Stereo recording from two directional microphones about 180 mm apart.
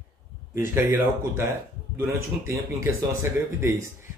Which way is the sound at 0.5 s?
15° right (ahead or behind).